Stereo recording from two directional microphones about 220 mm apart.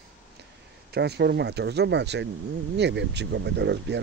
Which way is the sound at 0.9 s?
50° right (ahead or behind).